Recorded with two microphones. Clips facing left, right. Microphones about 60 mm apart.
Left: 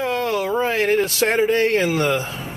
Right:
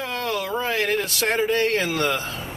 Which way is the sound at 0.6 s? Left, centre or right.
Left.